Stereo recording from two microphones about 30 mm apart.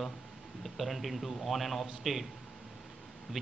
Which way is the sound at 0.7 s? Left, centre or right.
Centre.